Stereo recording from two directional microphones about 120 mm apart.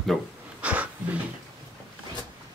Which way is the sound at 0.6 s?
10° right (ahead or behind).